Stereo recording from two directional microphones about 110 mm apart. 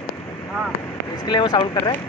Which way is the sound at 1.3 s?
40° left (ahead or behind).